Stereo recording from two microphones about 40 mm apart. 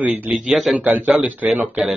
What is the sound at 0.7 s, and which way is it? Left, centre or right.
Speech, right.